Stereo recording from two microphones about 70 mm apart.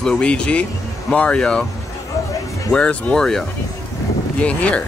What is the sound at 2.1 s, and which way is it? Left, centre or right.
Music, left.